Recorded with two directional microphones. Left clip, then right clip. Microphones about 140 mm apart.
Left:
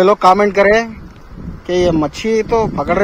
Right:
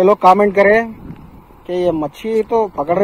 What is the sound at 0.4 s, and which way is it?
Speech, centre (ahead or behind).